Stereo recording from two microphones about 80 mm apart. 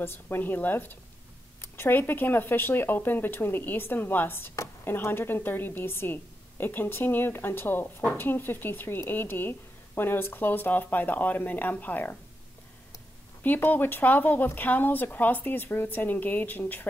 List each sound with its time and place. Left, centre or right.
0.0 s a woman's voice: left
13.4 s a woman's voice: left